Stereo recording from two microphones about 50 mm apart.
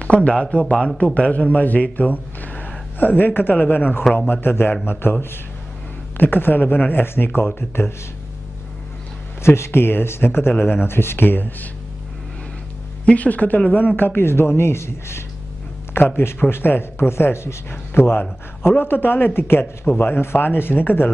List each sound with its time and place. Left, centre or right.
0.0 s a man's voice: left
9.4 s a man's voice: left
10.5 s a man's voice: left
13.0 s a man's voice: left